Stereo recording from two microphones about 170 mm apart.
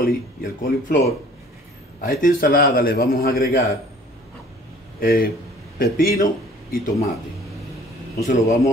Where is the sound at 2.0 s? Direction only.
55° left (ahead or behind).